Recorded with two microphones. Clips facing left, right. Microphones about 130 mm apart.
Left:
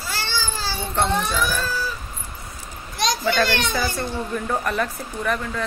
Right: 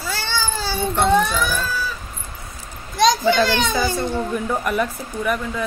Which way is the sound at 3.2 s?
15° right (ahead or behind).